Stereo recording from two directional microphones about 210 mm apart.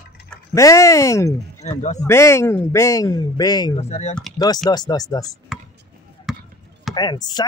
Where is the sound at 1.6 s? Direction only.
35° left (ahead or behind).